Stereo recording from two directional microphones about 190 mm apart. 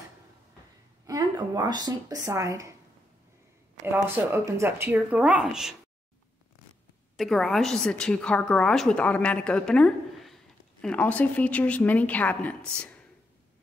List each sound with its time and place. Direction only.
1.0 s speech: 20° right (ahead or behind)
3.8 s speech: 10° right (ahead or behind)
7.2 s a woman's voice: centre (ahead or behind)